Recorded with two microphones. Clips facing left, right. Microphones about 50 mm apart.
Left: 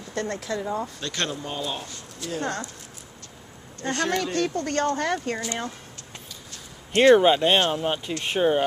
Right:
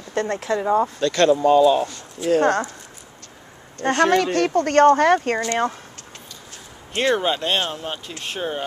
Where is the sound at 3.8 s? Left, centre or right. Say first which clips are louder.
Right 8 dB; right.